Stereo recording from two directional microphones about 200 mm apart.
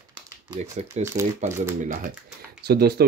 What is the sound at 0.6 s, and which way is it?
Speech, 35° right (ahead or behind).